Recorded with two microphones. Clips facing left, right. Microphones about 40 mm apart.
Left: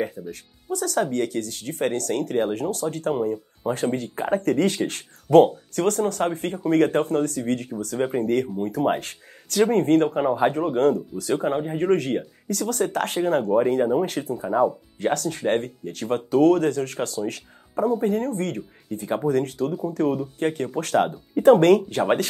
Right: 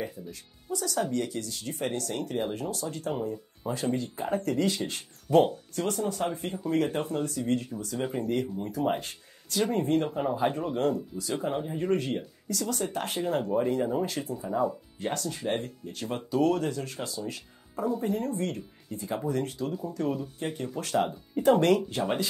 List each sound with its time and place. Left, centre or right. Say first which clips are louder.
0.3 s speech: left 6 dB; left
8.1 s speech: left 7 dB; left